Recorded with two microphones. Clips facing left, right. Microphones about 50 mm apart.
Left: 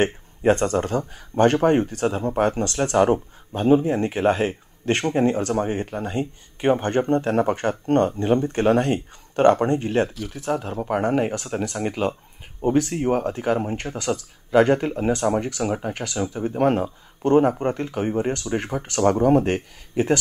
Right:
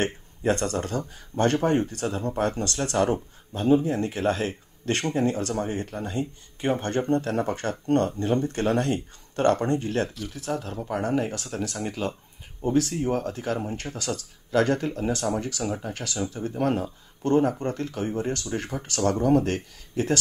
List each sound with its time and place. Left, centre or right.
0.0 s speech: left
10.0 s speech: centre
10.3 s speech: centre
10.8 s speech: left
16.5 s speech: left